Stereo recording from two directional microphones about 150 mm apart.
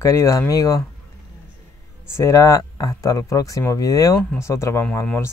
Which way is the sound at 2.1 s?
20° left (ahead or behind).